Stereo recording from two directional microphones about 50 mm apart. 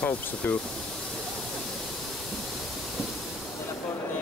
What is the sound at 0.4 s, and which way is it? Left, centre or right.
Speech, left.